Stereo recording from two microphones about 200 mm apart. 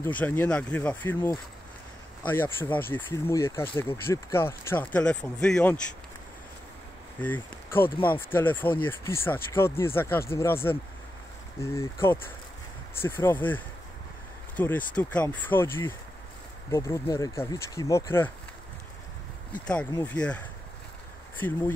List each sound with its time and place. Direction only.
0.0 s speech: 10° left (ahead or behind)
7.2 s speech: 10° left (ahead or behind)
14.6 s speech: 10° left (ahead or behind)
19.5 s speech: 5° left (ahead or behind)
19.9 s speech: 15° left (ahead or behind)
20.2 s speech: 5° left (ahead or behind)